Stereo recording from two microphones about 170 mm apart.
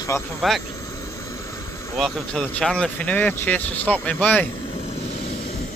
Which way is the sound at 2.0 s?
5° left (ahead or behind).